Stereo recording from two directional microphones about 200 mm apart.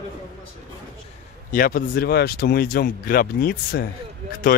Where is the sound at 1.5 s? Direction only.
45° left (ahead or behind).